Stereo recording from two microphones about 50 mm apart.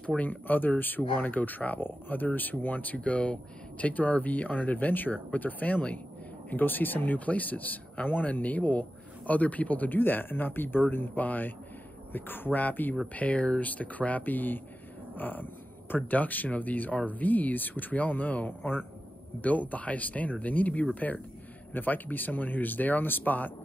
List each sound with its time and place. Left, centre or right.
0.2 s speech: left
6.5 s speech: left